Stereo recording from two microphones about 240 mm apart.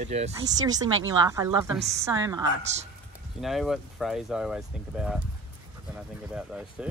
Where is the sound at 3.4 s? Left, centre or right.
Centre.